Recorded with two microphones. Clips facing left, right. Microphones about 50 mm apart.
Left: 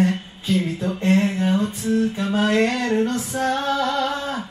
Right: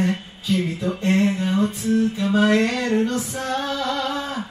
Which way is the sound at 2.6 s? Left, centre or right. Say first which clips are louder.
Left 1 dB; centre.